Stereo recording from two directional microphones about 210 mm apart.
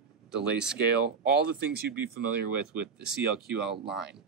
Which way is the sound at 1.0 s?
50° right (ahead or behind).